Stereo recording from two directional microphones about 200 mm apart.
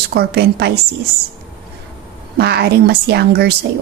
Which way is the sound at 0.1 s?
55° right (ahead or behind).